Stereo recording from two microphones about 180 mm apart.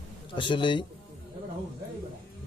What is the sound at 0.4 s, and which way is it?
Speech, 25° left (ahead or behind).